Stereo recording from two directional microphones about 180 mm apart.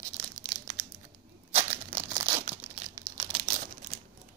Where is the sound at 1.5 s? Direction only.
35° right (ahead or behind).